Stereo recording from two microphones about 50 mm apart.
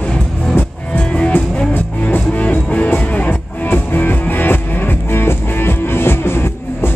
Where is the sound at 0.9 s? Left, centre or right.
Left.